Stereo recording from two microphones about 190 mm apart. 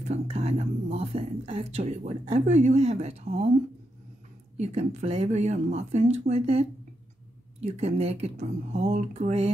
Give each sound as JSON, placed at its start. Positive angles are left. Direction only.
{"t": 0.1, "sound": "speech", "side_deg": -35}
{"t": 4.6, "sound": "speech", "side_deg": -35}
{"t": 7.6, "sound": "speech", "side_deg": -35}